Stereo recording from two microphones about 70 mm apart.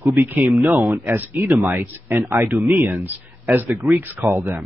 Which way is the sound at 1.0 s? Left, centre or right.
Right.